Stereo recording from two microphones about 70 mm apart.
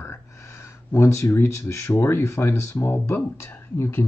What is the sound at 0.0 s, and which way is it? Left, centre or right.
Speech, left.